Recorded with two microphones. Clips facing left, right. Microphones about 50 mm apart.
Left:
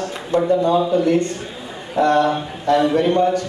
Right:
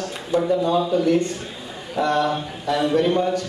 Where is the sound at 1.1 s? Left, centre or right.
Centre.